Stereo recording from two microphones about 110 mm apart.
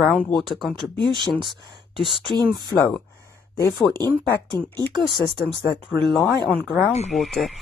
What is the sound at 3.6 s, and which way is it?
Speech, 40° left (ahead or behind).